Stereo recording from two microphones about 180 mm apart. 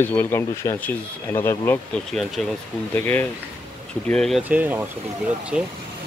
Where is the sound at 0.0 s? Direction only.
10° left (ahead or behind).